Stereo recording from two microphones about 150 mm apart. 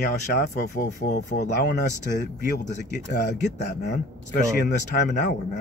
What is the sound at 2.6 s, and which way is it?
Speech, 50° left (ahead or behind).